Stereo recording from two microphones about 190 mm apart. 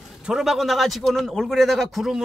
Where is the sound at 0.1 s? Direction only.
Centre (ahead or behind).